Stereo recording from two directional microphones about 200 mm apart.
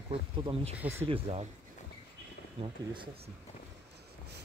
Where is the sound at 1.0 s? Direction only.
30° right (ahead or behind).